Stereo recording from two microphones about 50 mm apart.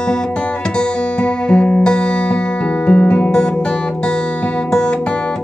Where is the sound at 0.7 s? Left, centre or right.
Centre.